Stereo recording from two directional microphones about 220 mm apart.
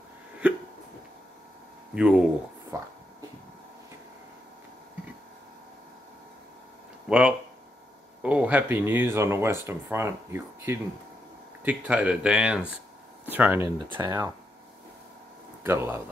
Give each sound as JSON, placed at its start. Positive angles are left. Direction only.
{"t": 0.4, "sound": "hiccup", "side_deg": -5}
{"t": 2.0, "sound": "speech", "side_deg": -5}
{"t": 2.7, "sound": "speech", "side_deg": -15}
{"t": 7.1, "sound": "speech", "side_deg": -5}
{"t": 15.6, "sound": "speech", "side_deg": -10}